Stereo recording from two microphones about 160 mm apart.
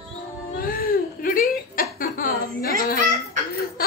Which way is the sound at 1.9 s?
60° left (ahead or behind).